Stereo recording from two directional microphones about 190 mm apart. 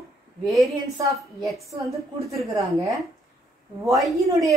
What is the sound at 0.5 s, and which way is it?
Speech, centre (ahead or behind).